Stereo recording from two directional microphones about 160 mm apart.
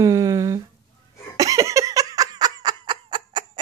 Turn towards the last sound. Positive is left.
turn(degrees=-30)  # may be behind; listen again after turning